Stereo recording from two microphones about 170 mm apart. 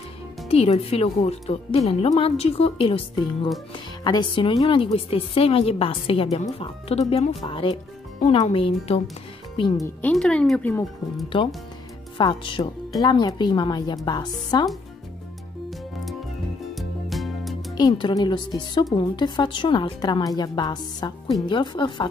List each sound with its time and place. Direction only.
0.5 s a woman's voice: 35° left (ahead or behind)
8.2 s speech: 40° left (ahead or behind)
10.1 s speech: 5° left (ahead or behind)
12.2 s a woman's voice: 30° left (ahead or behind)
16.7 s music: centre (ahead or behind)
17.7 s a woman's voice: 25° left (ahead or behind)